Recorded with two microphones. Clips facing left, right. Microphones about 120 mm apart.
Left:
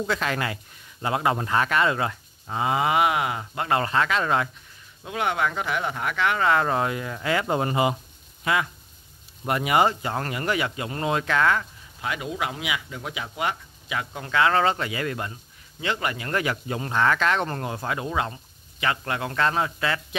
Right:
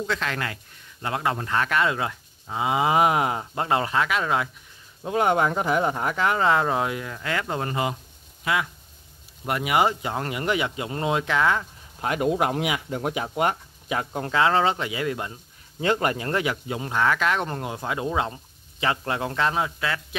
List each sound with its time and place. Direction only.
0.0 s speech: 5° left (ahead or behind)
2.6 s speech: 15° right (ahead or behind)
2.9 s speech: 35° right (ahead or behind)
3.8 s speech: 5° right (ahead or behind)
5.0 s speech: 35° right (ahead or behind)
6.6 s speech: 5° right (ahead or behind); by 8.0 s 10° left (ahead or behind)
8.5 s speech: centre (ahead or behind); by 11.6 s 15° right (ahead or behind)
12.0 s speech: 45° right (ahead or behind); by 14.6 s 25° right (ahead or behind)
14.6 s speech: 15° right (ahead or behind)
15.8 s speech: 40° right (ahead or behind)
16.3 s speech: 20° right (ahead or behind)
16.6 s speech: 10° right (ahead or behind)
19.8 s speech: centre (ahead or behind)